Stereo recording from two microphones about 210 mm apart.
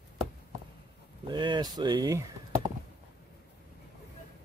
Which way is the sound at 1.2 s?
20° right (ahead or behind).